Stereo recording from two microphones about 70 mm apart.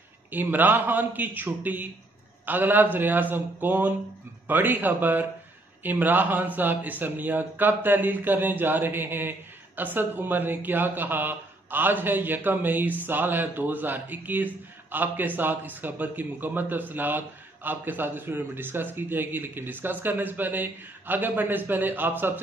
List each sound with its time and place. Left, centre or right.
0.3 s a man's voice: right